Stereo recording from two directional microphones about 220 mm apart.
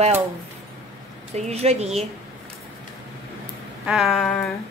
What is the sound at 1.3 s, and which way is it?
Speech, 30° right (ahead or behind).